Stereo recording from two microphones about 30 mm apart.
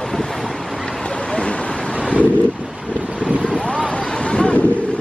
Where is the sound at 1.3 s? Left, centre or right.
Left.